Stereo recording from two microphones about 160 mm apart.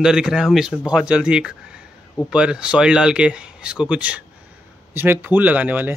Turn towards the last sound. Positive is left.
turn(degrees=-10)  # may be behind; listen again after turning